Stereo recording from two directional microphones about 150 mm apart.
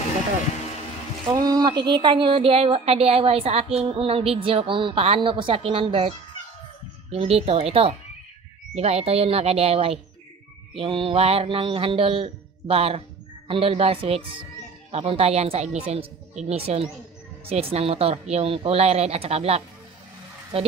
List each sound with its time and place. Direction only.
1.3 s a woman's voice: 25° right (ahead or behind); by 19.6 s 45° right (ahead or behind)